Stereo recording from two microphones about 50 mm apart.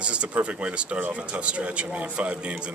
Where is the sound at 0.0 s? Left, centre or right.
Right.